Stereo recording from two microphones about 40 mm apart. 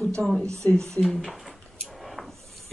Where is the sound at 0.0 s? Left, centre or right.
Centre.